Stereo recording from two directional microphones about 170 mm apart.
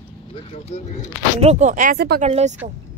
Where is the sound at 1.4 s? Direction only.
40° right (ahead or behind).